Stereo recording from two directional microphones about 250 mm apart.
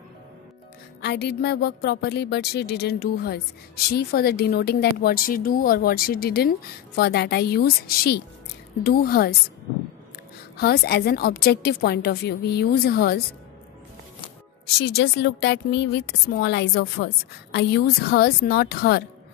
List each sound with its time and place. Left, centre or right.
1.0 s a woman's voice: left
8.8 s a woman's voice: left
10.6 s a woman's voice: left
14.8 s a woman's voice: left